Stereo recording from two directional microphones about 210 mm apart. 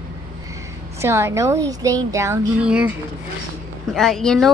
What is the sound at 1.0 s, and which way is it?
A woman's voice, 10° right (ahead or behind).